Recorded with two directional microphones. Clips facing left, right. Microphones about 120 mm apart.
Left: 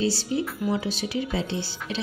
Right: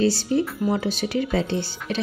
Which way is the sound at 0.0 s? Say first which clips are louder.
Right 5 dB; 55° right (ahead or behind).